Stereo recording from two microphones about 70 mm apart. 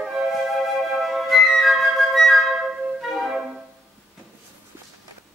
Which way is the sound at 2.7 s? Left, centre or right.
Centre.